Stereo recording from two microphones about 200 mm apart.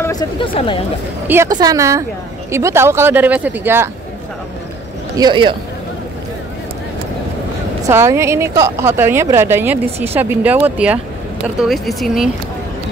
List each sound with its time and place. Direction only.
0.0 s speech: 20° left (ahead or behind)
1.2 s a woman's voice: 10° right (ahead or behind)
5.1 s speech: 20° right (ahead or behind)
7.9 s a woman's voice: 15° right (ahead or behind)